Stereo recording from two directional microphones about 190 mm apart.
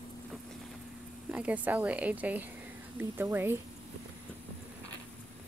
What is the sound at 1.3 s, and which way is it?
Speech, 5° right (ahead or behind).